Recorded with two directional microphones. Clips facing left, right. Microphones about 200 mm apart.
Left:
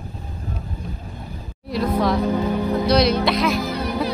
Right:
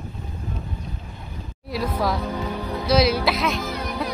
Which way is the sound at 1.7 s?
Centre (ahead or behind).